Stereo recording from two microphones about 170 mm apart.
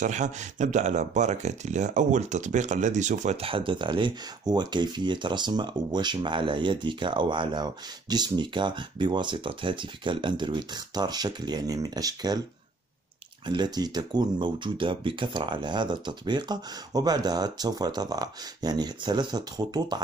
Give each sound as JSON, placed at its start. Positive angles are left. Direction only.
{"t": 0.0, "sound": "speech", "side_deg": -45}
{"t": 13.5, "sound": "speech", "side_deg": -25}